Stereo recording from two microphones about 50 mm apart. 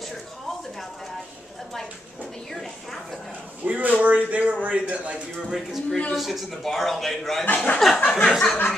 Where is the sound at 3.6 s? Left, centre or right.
Right.